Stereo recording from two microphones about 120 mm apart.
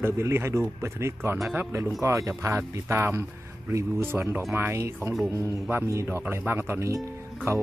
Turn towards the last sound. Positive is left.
turn(degrees=-20)  # may be behind; listen again after turning